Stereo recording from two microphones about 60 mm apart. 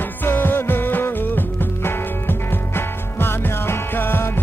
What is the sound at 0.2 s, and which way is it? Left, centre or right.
Music, left.